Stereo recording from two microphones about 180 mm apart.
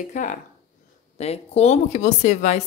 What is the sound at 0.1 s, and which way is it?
A woman's voice, 45° left (ahead or behind).